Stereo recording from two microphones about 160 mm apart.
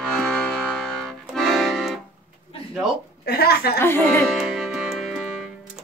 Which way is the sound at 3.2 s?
80° left.